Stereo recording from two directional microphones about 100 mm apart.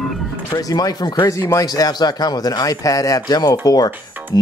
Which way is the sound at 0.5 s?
40° left (ahead or behind).